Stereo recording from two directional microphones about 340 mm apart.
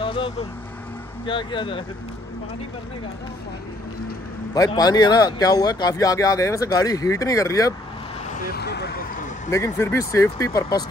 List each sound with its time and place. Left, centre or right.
0.0 s vehicle: centre
1.2 s a man's voice: centre
4.6 s a man's voice: centre
8.3 s vehicle: left
9.5 s a man's voice: centre